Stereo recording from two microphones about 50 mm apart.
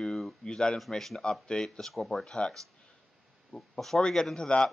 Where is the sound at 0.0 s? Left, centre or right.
Centre.